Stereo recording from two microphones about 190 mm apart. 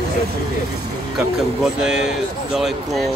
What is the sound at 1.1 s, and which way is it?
Speech, 5° right (ahead or behind).